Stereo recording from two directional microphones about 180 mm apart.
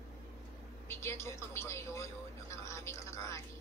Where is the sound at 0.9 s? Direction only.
15° left (ahead or behind).